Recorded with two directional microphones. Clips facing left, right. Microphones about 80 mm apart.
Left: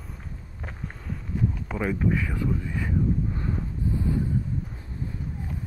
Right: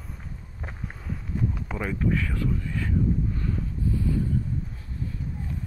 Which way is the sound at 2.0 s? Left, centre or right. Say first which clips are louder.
Left 1 dB; centre.